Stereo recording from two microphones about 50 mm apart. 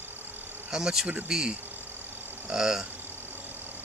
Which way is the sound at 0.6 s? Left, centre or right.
Centre.